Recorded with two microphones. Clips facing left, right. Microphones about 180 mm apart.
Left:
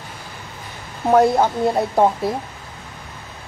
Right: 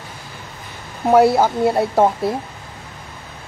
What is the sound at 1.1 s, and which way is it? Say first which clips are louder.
Speech: right 2 dB; 5° right (ahead or behind).